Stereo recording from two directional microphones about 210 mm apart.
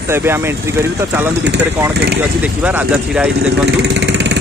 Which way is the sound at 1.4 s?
55° right (ahead or behind).